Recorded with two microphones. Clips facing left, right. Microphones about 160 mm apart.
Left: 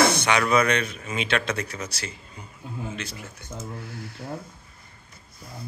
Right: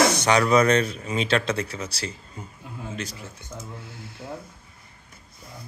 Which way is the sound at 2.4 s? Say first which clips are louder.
Left 2 dB; 45° right (ahead or behind).